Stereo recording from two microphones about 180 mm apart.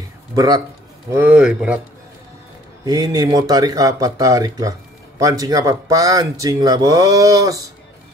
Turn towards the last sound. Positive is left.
turn(degrees=-20)  # may be behind; listen again after turning